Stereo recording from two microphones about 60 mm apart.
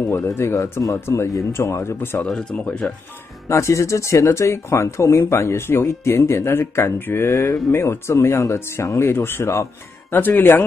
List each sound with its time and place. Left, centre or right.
0.6 s speech: left
1.0 s speech: left
2.2 s speech: centre
3.4 s speech: left
7.2 s speech: left
8.5 s speech: left
10.1 s speech: left